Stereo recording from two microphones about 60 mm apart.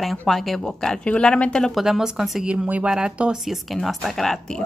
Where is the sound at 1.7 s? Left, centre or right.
Centre.